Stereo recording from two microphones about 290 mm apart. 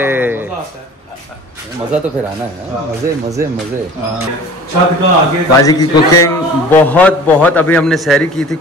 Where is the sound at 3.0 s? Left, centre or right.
Right.